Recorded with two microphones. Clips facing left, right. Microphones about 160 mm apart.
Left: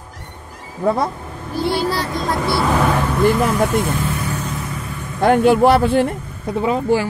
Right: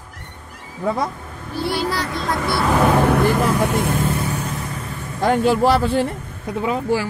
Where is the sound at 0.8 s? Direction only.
50° left (ahead or behind).